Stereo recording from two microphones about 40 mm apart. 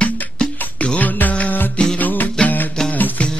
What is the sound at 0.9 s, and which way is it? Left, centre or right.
Music, left.